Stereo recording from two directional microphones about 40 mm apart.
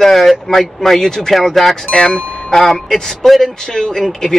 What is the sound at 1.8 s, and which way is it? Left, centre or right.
Speech, centre.